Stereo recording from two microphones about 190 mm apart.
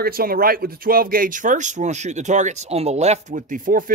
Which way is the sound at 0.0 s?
50° right (ahead or behind).